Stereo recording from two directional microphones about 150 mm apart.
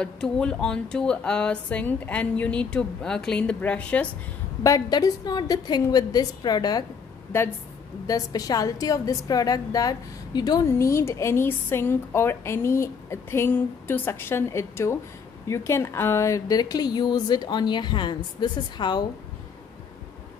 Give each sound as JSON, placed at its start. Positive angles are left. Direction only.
{"t": 0.0, "sound": "a woman's voice", "side_deg": 5}
{"t": 4.6, "sound": "a woman's voice", "side_deg": 25}
{"t": 8.1, "sound": "a woman's voice", "side_deg": 25}